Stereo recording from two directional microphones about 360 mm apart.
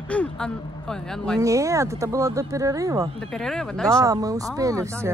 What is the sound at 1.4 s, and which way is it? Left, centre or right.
Speech, centre.